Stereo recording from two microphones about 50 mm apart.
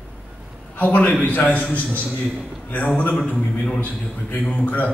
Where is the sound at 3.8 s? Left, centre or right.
Left.